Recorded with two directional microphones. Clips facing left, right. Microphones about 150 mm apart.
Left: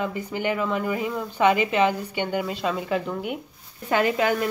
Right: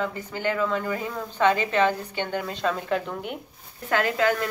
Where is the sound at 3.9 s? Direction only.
20° left (ahead or behind).